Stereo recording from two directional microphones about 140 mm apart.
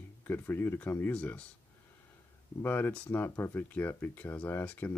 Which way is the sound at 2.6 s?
15° left (ahead or behind).